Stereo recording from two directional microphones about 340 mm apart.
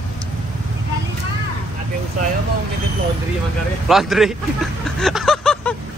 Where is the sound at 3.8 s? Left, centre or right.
Centre.